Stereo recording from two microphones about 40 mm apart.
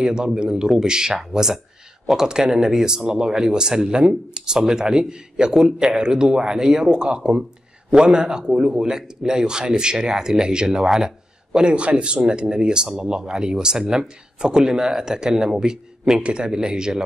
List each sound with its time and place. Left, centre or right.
0.0 s speech: centre
16.2 s speech: right
16.4 s speech: centre